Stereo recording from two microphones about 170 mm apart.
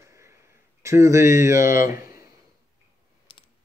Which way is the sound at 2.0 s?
60° left (ahead or behind).